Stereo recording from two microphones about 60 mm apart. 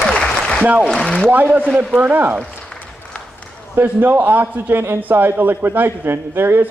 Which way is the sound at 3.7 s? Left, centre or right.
Right.